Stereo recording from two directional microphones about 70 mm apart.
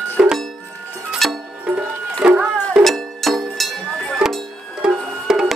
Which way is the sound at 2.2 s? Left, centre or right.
Centre.